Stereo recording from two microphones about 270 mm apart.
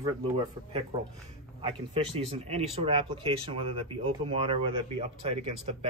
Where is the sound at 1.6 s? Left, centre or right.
Right.